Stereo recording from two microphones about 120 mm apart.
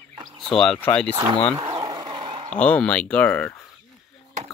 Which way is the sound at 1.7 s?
30° right (ahead or behind).